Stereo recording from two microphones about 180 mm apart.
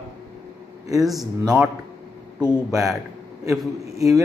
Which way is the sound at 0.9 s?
Centre (ahead or behind).